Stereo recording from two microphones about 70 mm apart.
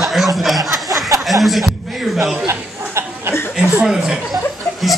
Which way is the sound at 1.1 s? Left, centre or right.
Right.